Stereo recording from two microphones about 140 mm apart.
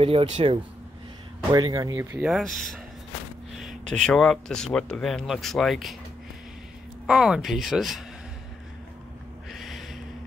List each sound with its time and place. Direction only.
0.0 s speech: 40° right (ahead or behind)
1.5 s speech: 25° right (ahead or behind)
2.2 s speech: centre (ahead or behind)
7.1 s speech: 5° right (ahead or behind)
9.5 s a sound: centre (ahead or behind)